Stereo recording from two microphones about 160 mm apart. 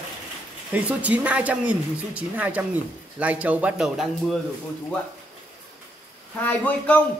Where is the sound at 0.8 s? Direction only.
10° right (ahead or behind).